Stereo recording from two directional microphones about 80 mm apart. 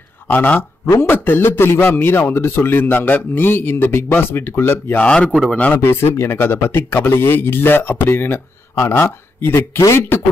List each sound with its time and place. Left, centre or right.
0.3 s a man's voice: left
5.0 s speech: centre
5.3 s speech: centre
5.8 s a man's voice: left
9.8 s speech: left